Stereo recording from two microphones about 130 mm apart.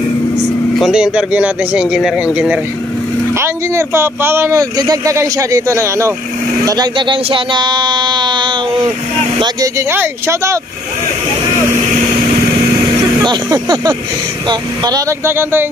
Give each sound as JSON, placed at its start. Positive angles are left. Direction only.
{"t": 0.7, "sound": "speech", "side_deg": -5}
{"t": 3.3, "sound": "speech", "side_deg": -20}
{"t": 9.4, "sound": "speech", "side_deg": -25}
{"t": 13.2, "sound": "speech", "side_deg": -30}
{"t": 15.2, "sound": "speech", "side_deg": -20}